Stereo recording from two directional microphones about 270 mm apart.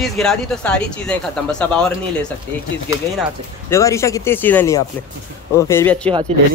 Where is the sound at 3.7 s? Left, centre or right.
Centre.